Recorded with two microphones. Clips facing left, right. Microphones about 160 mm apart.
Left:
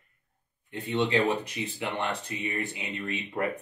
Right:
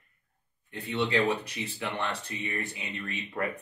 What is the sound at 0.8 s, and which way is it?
Speech, 20° left (ahead or behind).